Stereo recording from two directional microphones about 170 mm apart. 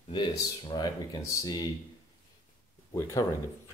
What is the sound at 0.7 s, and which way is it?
Speech, 20° left (ahead or behind).